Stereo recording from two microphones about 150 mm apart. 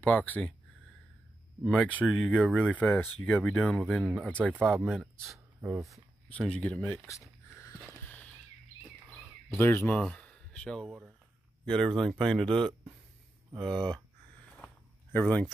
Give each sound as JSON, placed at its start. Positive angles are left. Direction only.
{"t": 0.0, "sound": "speech", "side_deg": 10}
{"t": 1.6, "sound": "speech", "side_deg": -5}
{"t": 2.2, "sound": "speech", "side_deg": 0}
{"t": 5.6, "sound": "speech", "side_deg": -20}
{"t": 6.2, "sound": "speech", "side_deg": 5}
{"t": 7.1, "sound": "a sound", "side_deg": 20}
{"t": 9.1, "sound": "a sound", "side_deg": 10}
{"t": 10.9, "sound": "speech", "side_deg": -10}
{"t": 11.6, "sound": "speech", "side_deg": 5}
{"t": 12.4, "sound": "speech", "side_deg": -35}
{"t": 15.1, "sound": "speech", "side_deg": 10}